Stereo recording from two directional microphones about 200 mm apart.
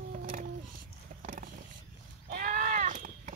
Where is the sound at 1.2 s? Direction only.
45° right (ahead or behind).